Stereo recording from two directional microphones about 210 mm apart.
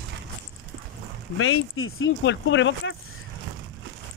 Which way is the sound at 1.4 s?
75° left (ahead or behind).